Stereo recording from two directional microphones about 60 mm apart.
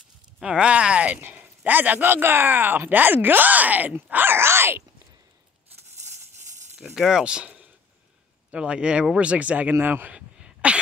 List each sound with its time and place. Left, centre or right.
0.4 s speech: centre; by 4.8 s right
6.8 s speech: centre; by 10.1 s right
10.1 s a sound: centre